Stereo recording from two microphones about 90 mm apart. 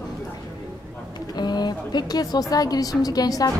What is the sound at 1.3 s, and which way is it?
A woman's voice, 50° left (ahead or behind).